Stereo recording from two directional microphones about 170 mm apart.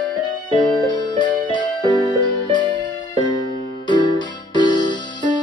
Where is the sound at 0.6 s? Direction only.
25° left (ahead or behind).